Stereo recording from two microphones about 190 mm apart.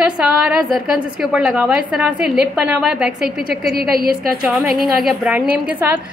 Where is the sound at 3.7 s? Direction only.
55° right (ahead or behind).